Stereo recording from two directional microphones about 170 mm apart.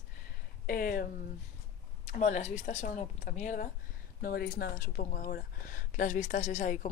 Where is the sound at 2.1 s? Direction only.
45° left (ahead or behind).